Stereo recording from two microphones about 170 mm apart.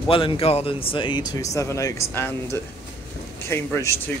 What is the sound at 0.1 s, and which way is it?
Speech, 30° left (ahead or behind).